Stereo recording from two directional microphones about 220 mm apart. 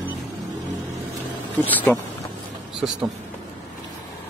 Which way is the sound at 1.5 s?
10° left (ahead or behind).